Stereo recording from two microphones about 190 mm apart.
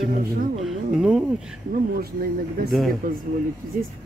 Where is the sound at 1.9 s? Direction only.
55° right (ahead or behind).